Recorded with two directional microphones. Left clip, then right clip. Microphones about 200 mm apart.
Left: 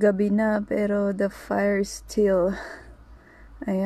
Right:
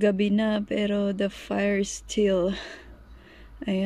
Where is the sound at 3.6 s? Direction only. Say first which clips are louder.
Left 2 dB; 20° right (ahead or behind).